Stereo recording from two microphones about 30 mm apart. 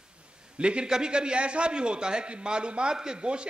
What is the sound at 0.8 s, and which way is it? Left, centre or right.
A man's voice, right.